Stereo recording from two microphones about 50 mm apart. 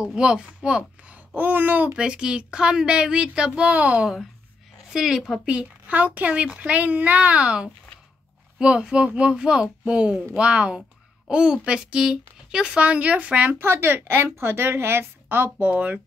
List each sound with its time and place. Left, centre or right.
0.0 s speech: centre
1.3 s speech: right
2.0 s a child's voice: centre
4.9 s speech: centre
5.5 s a child's voice: right
12.8 s a child's voice: right
13.6 s speech: right
14.3 s a woman's voice: right
15.6 s speech: right